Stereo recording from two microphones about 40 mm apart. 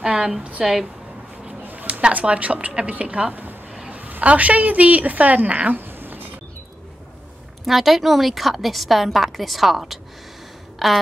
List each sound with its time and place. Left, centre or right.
0.0 s speech: right
0.4 s a woman's voice: right
1.6 s a sound: right
1.9 s a woman's voice: right
3.9 s a woman's voice: right
5.8 s cat: right
7.6 s a woman's voice: centre